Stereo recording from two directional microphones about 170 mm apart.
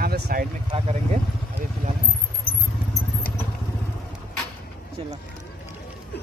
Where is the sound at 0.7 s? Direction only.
35° right (ahead or behind).